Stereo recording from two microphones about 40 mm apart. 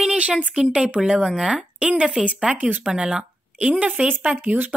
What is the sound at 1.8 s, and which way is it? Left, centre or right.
Speech, right.